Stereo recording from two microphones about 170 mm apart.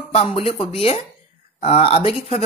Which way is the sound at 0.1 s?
35° left (ahead or behind).